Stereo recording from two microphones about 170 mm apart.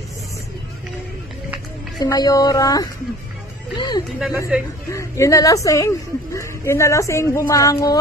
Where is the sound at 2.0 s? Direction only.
20° left (ahead or behind).